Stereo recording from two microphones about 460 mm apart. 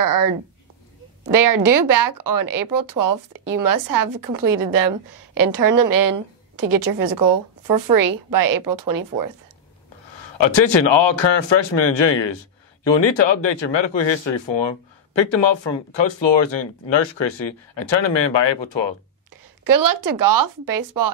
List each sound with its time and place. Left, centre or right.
0.0 s a woman's voice: right
1.3 s a woman's voice: right
10.0 s speech: left
19.6 s a woman's voice: right